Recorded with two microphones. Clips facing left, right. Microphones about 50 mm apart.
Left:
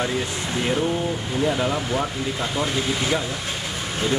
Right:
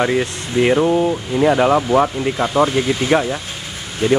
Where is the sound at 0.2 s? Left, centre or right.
Right.